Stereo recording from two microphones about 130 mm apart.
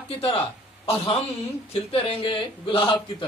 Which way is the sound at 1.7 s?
45° left (ahead or behind).